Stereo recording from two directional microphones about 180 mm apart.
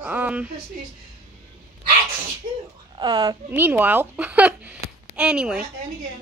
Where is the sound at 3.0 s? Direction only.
25° right (ahead or behind).